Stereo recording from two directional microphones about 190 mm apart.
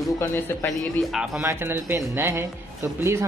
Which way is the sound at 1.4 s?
15° right (ahead or behind).